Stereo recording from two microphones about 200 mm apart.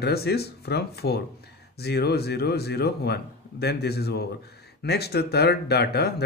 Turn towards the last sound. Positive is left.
turn(degrees=55)  # may be behind; listen again after turning